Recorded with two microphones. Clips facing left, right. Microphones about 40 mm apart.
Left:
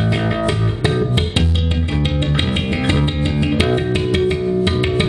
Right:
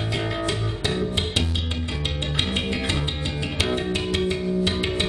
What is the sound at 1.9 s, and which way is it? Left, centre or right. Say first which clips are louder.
Music: left 8 dB; left.